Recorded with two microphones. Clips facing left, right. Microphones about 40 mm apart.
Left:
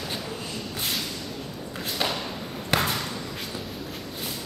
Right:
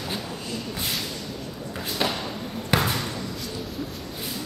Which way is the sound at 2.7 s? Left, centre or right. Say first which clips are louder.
Right 1 dB; centre.